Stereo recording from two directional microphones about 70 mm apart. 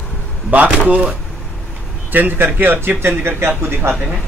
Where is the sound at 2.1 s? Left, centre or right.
Right.